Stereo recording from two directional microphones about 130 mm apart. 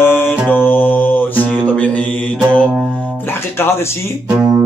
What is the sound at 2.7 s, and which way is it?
Music, 10° right (ahead or behind).